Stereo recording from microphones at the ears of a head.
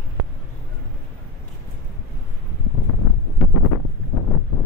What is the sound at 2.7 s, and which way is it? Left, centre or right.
Wind noise, left.